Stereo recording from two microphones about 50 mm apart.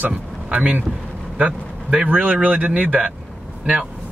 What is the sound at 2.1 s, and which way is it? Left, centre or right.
Speech, right.